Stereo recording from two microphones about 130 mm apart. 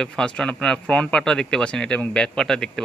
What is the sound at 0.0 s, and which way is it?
A man's voice, 5° left (ahead or behind).